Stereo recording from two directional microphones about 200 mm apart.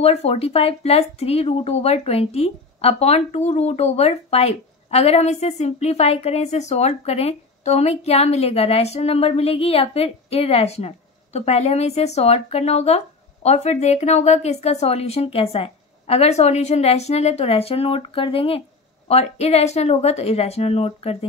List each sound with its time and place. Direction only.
0.0 s speech: 30° left (ahead or behind)